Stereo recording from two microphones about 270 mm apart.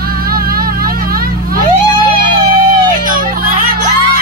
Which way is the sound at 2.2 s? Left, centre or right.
Right.